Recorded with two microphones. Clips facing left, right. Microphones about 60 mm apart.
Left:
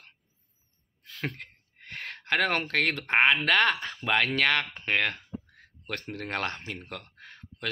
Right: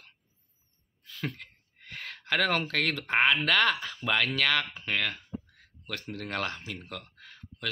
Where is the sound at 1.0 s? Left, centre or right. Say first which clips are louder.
Left 1 dB; left.